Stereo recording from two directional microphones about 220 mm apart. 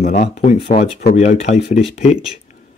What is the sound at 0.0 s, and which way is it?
Speech, 30° left (ahead or behind).